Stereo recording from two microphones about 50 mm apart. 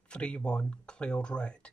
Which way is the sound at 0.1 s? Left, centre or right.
Left.